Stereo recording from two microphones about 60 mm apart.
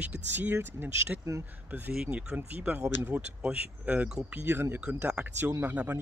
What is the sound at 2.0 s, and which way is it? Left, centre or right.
Speech, right.